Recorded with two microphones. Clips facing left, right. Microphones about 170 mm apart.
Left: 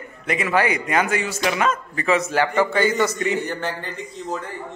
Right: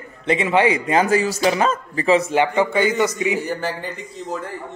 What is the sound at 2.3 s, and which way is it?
Speech, 20° right (ahead or behind).